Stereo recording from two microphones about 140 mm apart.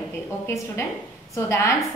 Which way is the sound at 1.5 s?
20° left (ahead or behind).